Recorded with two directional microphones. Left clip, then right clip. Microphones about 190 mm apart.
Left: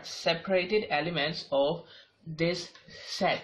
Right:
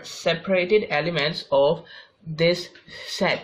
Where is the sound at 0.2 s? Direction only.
45° right (ahead or behind).